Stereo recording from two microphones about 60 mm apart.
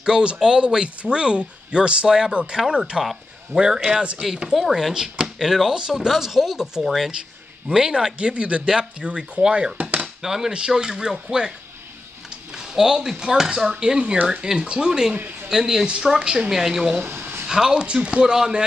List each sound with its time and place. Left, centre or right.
0.0 s speech: centre
12.5 s speech: centre
17.0 s a sound: right
17.5 s speech: centre